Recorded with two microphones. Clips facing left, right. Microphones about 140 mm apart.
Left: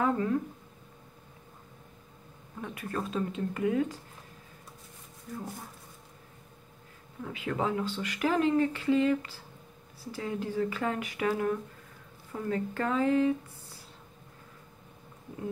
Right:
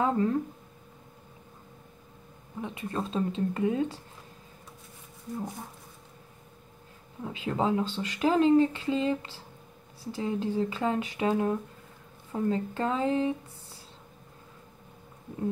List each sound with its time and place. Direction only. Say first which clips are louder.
0.0 s speech: right 2 dB; 30° right (ahead or behind)
2.6 s speech: right 2 dB; 25° right (ahead or behind)
7.3 s speech: right 3 dB; 25° right (ahead or behind)